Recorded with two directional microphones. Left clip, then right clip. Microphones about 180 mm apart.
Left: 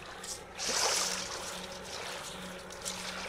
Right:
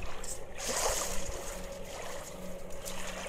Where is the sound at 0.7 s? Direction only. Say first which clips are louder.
Left 2 dB; 45° left (ahead or behind).